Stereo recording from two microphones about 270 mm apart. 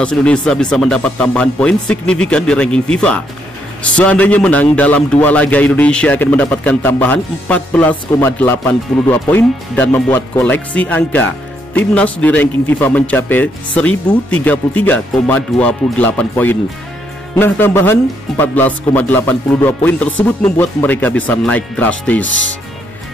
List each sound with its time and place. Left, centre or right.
0.0 s a man's voice: centre
22.2 s speech: left